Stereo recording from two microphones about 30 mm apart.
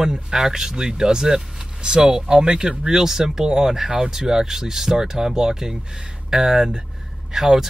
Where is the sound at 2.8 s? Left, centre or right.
Centre.